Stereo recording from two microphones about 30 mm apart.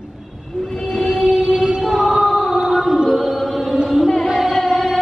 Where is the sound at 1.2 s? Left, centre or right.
Centre.